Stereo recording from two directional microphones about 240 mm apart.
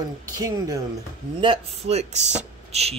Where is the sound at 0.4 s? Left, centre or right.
Centre.